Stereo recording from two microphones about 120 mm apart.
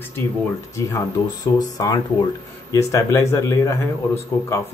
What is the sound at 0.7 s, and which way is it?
Speech, 30° left (ahead or behind).